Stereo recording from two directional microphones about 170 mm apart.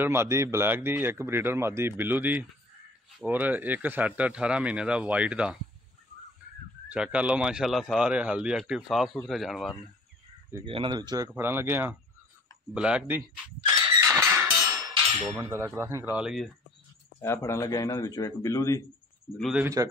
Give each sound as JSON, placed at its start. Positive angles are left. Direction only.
{"t": 0.0, "sound": "speech", "side_deg": -15}
{"t": 6.9, "sound": "speech", "side_deg": -5}
{"t": 10.5, "sound": "speech", "side_deg": -30}
{"t": 11.3, "sound": "speech", "side_deg": -15}
{"t": 13.7, "sound": "a sound", "side_deg": -20}
{"t": 15.2, "sound": "speech", "side_deg": -15}
{"t": 17.2, "sound": "speech", "side_deg": 15}
{"t": 19.3, "sound": "speech", "side_deg": 0}
{"t": 19.6, "sound": "speech", "side_deg": -20}